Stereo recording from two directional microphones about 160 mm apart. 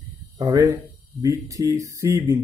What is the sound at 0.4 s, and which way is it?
Speech, 20° right (ahead or behind).